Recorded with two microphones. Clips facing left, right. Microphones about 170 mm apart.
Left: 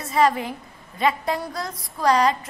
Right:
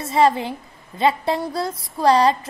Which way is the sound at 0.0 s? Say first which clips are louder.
Right 3 dB; 25° right (ahead or behind).